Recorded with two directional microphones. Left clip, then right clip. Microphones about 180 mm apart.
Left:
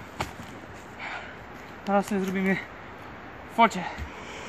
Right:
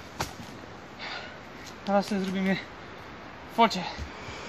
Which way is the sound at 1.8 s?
Centre (ahead or behind).